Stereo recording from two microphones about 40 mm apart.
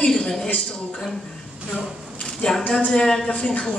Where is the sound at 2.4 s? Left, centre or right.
Left.